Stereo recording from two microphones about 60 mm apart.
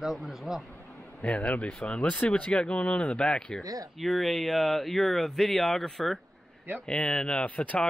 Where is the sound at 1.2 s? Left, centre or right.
Left.